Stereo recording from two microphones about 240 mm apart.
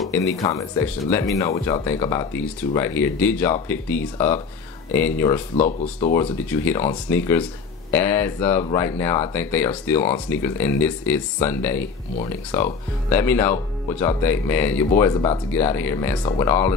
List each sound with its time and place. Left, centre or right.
0.4 s speech: centre
5.6 s speech: left
6.1 s speech: centre